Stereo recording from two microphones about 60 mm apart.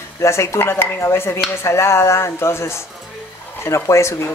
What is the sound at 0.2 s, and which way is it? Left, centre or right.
Speech, left.